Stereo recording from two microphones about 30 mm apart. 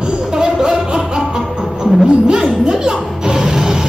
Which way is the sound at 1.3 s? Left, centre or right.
Right.